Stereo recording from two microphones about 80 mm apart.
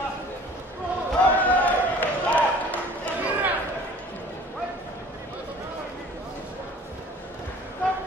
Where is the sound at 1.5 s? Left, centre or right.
Left.